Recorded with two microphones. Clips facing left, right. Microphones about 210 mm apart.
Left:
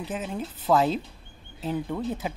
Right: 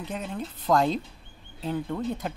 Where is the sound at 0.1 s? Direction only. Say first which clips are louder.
Left 1 dB; 5° left (ahead or behind).